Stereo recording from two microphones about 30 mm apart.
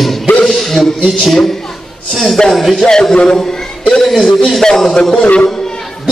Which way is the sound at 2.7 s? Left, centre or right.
Centre.